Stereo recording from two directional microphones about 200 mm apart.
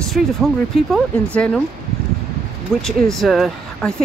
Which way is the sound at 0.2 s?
Centre (ahead or behind).